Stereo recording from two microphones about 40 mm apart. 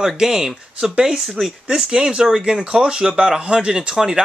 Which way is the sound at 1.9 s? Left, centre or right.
Centre.